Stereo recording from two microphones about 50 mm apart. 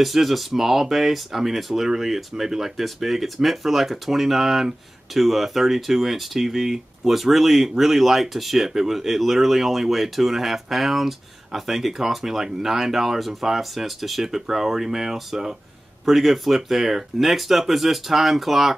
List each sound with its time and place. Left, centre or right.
0.0 s speech: centre